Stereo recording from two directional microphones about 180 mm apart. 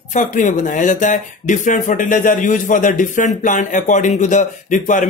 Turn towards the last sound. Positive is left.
turn(degrees=45)  # may be behind; listen again after turning